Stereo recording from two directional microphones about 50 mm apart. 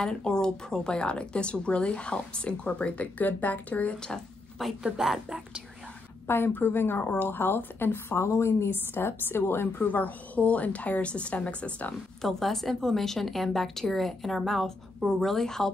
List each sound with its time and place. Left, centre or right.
0.0 s speech: centre; by 3.9 s left
4.6 s a woman's voice: centre
4.9 s a woman's voice: centre
6.2 s a woman's voice: left
8.2 s a woman's voice: left
9.8 s speech: left
12.2 s a woman's voice: centre